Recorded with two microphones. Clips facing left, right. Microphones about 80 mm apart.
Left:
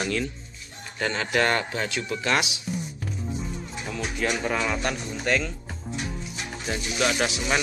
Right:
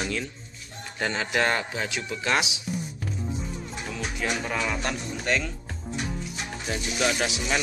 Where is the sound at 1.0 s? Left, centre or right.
Centre.